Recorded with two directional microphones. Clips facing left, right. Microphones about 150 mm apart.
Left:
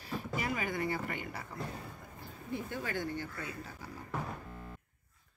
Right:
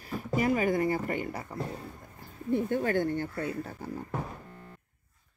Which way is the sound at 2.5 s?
50° right (ahead or behind).